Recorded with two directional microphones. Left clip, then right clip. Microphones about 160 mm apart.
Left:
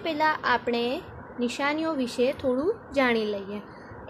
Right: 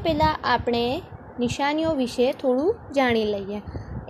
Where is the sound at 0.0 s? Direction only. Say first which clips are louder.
Right 3 dB; 30° right (ahead or behind).